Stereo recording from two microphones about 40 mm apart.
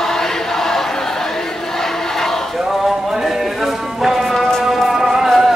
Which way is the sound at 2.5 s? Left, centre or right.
Centre.